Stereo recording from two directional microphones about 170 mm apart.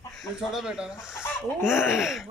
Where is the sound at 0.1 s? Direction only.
Centre (ahead or behind).